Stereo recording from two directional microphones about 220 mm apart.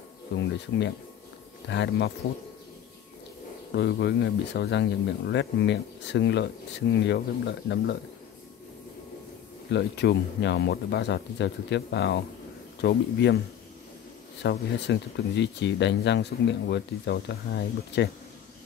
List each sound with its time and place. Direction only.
0.4 s speech: 55° left (ahead or behind)
3.7 s speech: 50° left (ahead or behind)
9.7 s speech: 50° left (ahead or behind)
14.4 s speech: 50° left (ahead or behind)